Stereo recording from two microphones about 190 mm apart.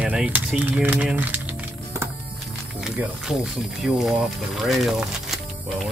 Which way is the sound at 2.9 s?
5° right (ahead or behind).